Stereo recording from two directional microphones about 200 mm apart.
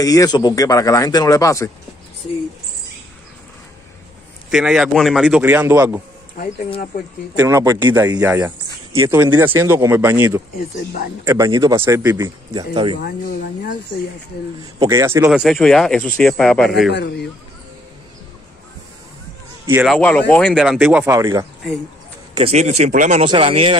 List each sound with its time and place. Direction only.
0.0 s speech: 15° left (ahead or behind)
4.5 s speech: 5° right (ahead or behind)
6.3 s speech: 40° left (ahead or behind)
7.3 s speech: 15° right (ahead or behind)
14.8 s speech: 15° right (ahead or behind)
15.2 s speech: centre (ahead or behind)
16.9 s a man's voice: 55° left (ahead or behind)
19.6 s speech: 10° right (ahead or behind)
19.9 s speech: 5° left (ahead or behind)
21.0 s speech: 15° right (ahead or behind)
22.3 s a man's voice: 30° right (ahead or behind)
23.3 s a man's voice: 25° right (ahead or behind)